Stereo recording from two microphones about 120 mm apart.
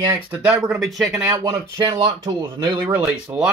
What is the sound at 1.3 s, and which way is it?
Speech, 30° right (ahead or behind).